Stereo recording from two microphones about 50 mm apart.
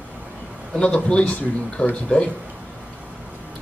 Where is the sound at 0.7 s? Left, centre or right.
Left.